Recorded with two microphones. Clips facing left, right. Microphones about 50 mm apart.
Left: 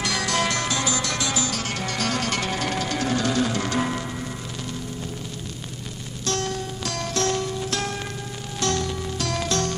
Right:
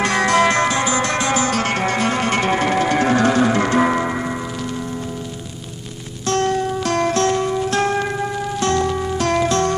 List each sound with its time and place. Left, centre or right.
0.0 s music: right
6.2 s music: right